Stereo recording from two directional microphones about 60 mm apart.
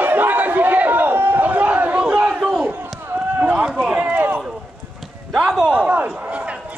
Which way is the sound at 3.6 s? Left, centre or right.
Centre.